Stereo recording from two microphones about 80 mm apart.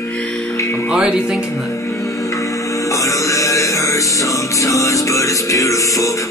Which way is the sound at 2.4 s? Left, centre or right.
Left.